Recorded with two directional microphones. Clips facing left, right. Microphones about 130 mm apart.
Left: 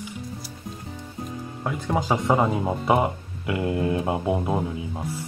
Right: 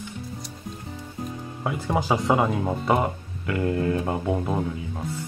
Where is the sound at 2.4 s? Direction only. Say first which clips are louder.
Left 1 dB; 10° left (ahead or behind).